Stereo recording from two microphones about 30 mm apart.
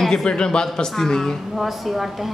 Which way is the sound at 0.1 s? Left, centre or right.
Left.